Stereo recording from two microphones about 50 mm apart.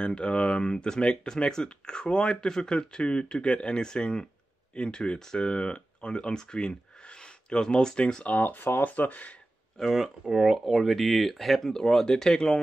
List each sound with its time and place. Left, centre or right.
0.0 s speech: centre
8.4 s speech: left
8.8 s speech: left
10.3 s speech: centre